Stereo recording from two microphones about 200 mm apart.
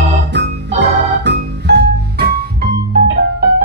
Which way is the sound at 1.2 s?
55° right (ahead or behind).